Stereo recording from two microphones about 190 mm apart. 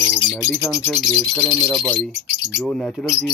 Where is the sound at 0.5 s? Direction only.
5° left (ahead or behind).